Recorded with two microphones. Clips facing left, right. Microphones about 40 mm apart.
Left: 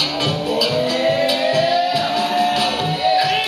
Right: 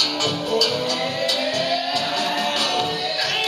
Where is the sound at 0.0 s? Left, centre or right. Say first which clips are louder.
Left 3 dB; centre.